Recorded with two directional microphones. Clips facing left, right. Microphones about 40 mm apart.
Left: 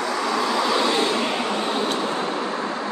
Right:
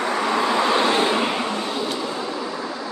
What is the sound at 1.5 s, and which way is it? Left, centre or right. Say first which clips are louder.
Vehicle: left 2 dB; left.